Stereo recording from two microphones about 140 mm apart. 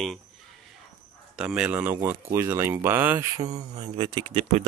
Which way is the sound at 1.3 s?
5° right (ahead or behind).